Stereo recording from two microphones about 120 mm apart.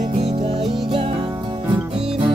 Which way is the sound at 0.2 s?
50° right (ahead or behind).